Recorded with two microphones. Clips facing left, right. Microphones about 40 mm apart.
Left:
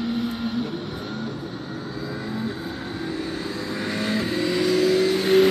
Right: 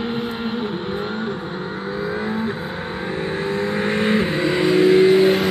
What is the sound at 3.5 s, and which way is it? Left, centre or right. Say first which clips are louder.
Vehicle: right 7 dB; right.